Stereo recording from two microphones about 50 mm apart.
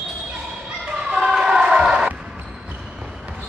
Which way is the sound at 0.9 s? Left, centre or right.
Centre.